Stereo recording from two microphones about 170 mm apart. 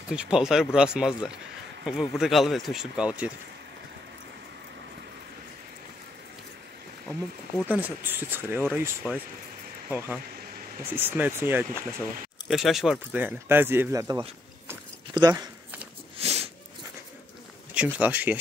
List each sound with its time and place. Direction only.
0.1 s speech: 5° right (ahead or behind)
7.6 s speech: 10° right (ahead or behind)
12.4 s speech: centre (ahead or behind); by 15.5 s 25° right (ahead or behind)
16.2 s a sound: 40° right (ahead or behind)
17.7 s speech: 10° right (ahead or behind)